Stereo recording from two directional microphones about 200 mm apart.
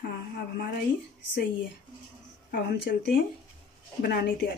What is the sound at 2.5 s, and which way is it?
Dishes, 50° left (ahead or behind).